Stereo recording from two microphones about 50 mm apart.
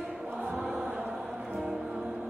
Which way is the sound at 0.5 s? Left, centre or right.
Centre.